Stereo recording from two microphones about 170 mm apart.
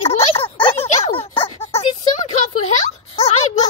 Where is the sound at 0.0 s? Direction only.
35° left (ahead or behind).